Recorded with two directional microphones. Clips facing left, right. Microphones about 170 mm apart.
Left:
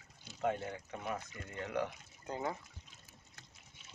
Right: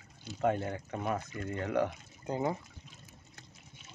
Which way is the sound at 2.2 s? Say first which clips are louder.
Right 6 dB; 20° right (ahead or behind).